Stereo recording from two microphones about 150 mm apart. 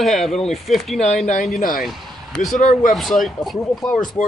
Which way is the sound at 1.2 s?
55° left (ahead or behind).